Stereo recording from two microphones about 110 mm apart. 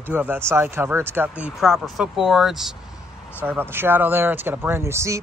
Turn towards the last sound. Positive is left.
turn(degrees=-25)  # may be behind; listen again after turning